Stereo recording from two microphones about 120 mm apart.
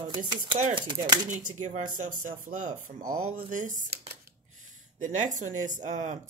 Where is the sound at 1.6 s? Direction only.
90° right.